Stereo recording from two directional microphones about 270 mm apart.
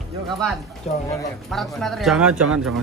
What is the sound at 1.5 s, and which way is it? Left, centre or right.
Speech, centre.